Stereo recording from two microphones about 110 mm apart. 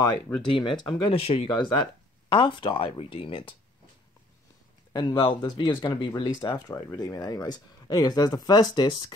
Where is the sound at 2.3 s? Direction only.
50° left (ahead or behind).